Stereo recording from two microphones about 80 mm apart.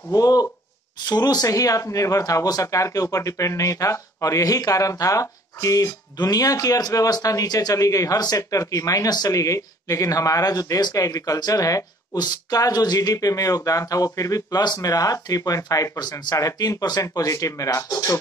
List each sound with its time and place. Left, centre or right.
0.1 s a man's voice: left